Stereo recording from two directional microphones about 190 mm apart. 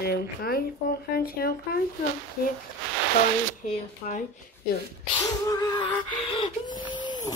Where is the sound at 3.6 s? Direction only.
35° left (ahead or behind).